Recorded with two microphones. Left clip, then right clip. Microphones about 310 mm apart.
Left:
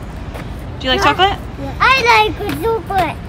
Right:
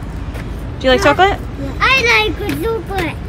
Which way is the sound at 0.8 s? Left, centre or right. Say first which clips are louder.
Right 2 dB; centre.